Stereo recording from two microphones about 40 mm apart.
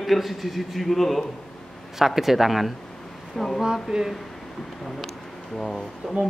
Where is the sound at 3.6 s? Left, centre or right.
Centre.